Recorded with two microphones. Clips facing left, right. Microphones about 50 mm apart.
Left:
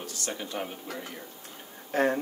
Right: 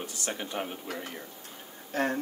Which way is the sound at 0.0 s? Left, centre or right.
Right.